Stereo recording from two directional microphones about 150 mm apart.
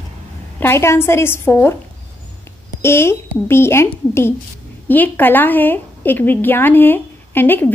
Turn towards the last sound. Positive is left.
turn(degrees=10)  # may be behind; listen again after turning